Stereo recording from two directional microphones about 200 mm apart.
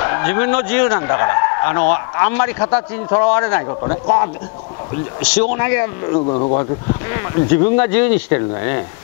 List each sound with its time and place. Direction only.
0.0 s speech: 15° left (ahead or behind)
5.2 s speech: 10° left (ahead or behind)
6.1 s speech: 30° left (ahead or behind)
6.9 s speech: 20° left (ahead or behind)